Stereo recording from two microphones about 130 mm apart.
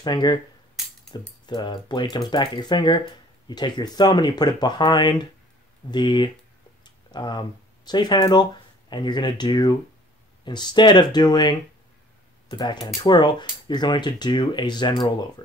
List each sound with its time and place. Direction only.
0.0 s speech: 35° left (ahead or behind)
0.8 s a sound: centre (ahead or behind)
1.4 s speech: 35° left (ahead or behind)